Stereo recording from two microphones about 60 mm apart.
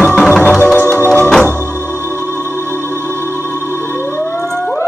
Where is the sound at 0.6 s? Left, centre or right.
Left.